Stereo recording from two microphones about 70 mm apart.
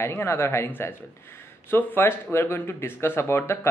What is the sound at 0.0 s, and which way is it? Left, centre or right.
Speech, left.